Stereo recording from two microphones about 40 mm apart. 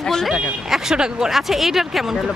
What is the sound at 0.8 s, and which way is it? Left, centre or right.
Speech, centre.